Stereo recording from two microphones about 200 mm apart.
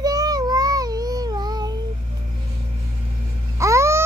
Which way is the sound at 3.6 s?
15° right (ahead or behind).